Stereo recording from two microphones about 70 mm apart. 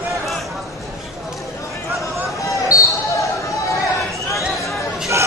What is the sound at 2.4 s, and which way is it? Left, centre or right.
Basketball bounce, left.